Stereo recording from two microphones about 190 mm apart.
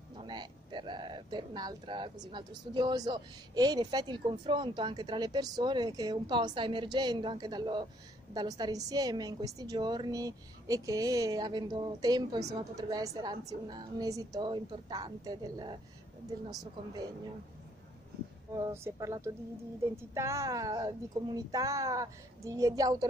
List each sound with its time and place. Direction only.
0.2 s a sound: 25° right (ahead or behind)
2.3 s a woman's voice: 25° right (ahead or behind)
18.5 s a woman's voice: 15° right (ahead or behind)